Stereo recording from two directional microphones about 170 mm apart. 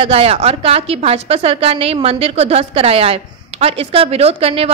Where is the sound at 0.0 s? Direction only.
35° right (ahead or behind).